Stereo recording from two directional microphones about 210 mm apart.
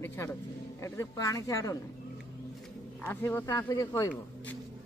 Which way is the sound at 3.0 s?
10° left (ahead or behind).